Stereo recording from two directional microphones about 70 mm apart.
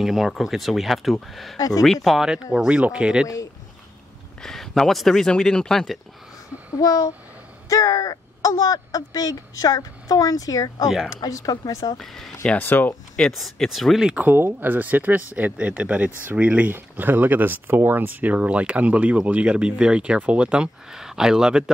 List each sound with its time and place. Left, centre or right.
0.0 s speech: centre
4.4 s speech: centre
6.7 s speech: left
12.0 s speech: centre
12.5 s speech: left
13.4 s speech: centre
14.2 s speech: right; by 21.6 s centre